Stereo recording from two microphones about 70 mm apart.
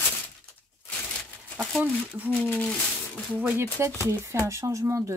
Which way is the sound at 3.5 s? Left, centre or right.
Right.